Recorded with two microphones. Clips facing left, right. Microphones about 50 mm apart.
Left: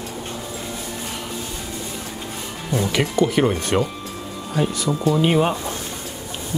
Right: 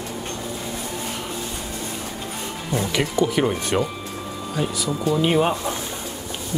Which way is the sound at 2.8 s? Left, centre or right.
Centre.